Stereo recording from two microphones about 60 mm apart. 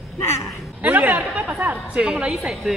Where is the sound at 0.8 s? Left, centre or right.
Right.